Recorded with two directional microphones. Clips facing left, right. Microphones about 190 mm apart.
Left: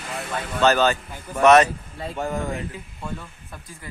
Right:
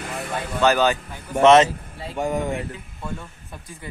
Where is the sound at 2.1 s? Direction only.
15° right (ahead or behind).